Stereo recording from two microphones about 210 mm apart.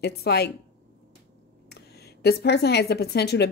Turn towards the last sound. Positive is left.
turn(degrees=50)  # may be behind; listen again after turning